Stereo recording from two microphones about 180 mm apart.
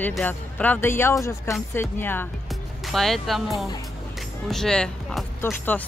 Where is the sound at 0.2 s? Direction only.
10° left (ahead or behind).